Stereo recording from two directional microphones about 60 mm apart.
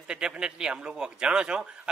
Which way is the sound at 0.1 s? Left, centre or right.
Centre.